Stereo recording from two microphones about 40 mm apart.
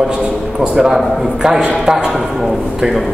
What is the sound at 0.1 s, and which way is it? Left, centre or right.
Speech, right.